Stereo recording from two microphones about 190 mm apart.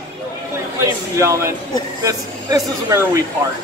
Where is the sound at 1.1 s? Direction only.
15° right (ahead or behind).